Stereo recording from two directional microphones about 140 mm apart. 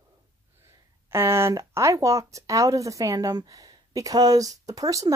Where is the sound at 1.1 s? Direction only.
20° right (ahead or behind).